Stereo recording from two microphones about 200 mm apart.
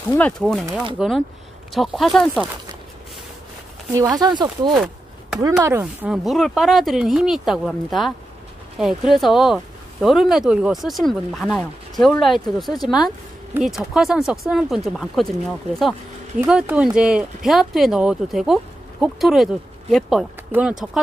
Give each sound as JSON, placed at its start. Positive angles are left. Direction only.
{"t": 0.2, "sound": "speech", "side_deg": 0}
{"t": 3.9, "sound": "speech", "side_deg": -20}
{"t": 6.1, "sound": "speech", "side_deg": 0}
{"t": 16.3, "sound": "speech", "side_deg": -5}